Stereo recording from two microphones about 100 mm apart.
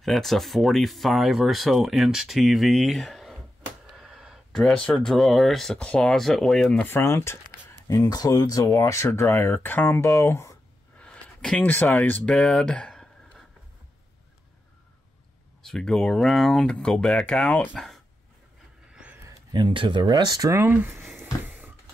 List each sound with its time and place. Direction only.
0.0 s speech: centre (ahead or behind)
3.8 s a sound: 5° right (ahead or behind)
4.5 s speech: 5° left (ahead or behind)
6.9 s speech: 25° left (ahead or behind)
7.9 s speech: 35° left (ahead or behind)
11.0 s a sound: 10° left (ahead or behind)
11.6 s speech: 20° left (ahead or behind)
12.1 s speech: 5° left (ahead or behind)
15.6 s speech: 5° left (ahead or behind)
17.7 s a sound: 5° left (ahead or behind)
19.5 s speech: 55° right (ahead or behind)
20.4 s speech: 30° right (ahead or behind)
21.2 s a sound: 20° right (ahead or behind)